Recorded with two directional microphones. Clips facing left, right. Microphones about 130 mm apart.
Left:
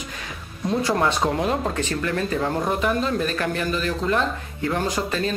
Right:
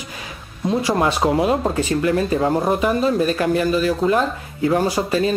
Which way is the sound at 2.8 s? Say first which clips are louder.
Right 5 dB; 10° right (ahead or behind).